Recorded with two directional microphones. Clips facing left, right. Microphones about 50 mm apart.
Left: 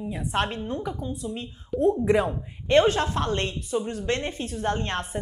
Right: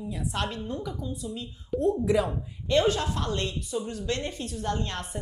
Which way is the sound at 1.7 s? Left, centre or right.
Centre.